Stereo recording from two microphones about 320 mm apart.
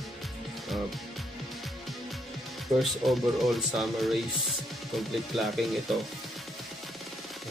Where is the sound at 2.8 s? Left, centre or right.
Centre.